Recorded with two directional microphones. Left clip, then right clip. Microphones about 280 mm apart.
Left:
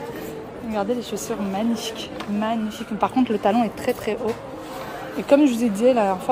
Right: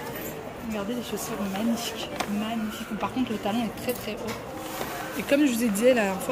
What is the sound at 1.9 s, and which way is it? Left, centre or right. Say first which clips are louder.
Speech: left 2 dB; centre.